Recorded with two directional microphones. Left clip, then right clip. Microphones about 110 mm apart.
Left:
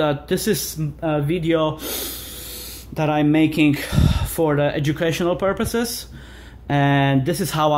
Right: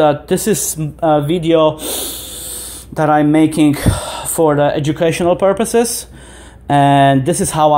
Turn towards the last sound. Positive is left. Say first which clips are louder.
# right 7 dB
turn(degrees=-20)  # may be behind; listen again after turning